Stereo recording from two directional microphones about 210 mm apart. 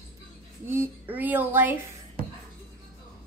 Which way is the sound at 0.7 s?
10° right (ahead or behind).